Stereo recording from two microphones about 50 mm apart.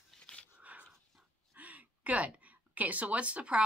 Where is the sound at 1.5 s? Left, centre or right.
Right.